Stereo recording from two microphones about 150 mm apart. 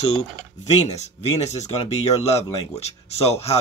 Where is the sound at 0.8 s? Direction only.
50° left (ahead or behind).